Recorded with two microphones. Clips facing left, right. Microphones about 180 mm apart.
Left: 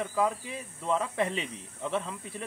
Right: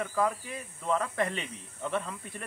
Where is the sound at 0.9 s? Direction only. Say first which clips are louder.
Left 1 dB; 5° left (ahead or behind).